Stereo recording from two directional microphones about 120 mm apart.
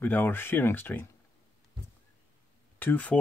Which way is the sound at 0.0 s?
15° left (ahead or behind).